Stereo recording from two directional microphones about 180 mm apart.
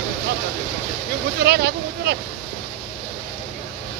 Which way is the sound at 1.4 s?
65° right (ahead or behind).